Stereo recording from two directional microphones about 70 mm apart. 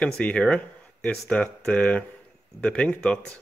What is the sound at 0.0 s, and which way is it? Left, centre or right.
Speech, centre.